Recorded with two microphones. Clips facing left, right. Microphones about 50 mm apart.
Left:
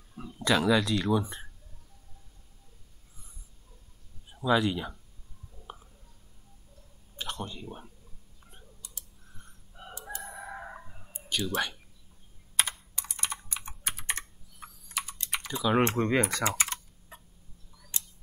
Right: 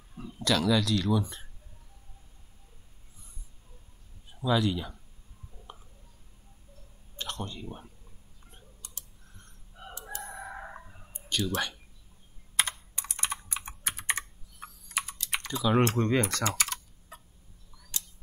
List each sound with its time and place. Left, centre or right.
0.2 s speech: left
4.4 s speech: centre
5.7 s a sound: centre
7.2 s speech: centre
10.2 s fowl: centre
13.0 s computer keyboard: centre
15.4 s speech: centre